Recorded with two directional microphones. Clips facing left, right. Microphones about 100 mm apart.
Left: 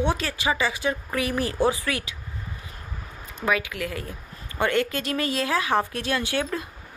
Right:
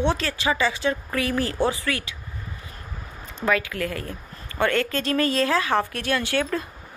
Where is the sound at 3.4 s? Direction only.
10° left (ahead or behind).